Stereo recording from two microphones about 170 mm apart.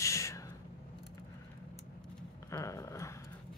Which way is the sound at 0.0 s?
20° left (ahead or behind).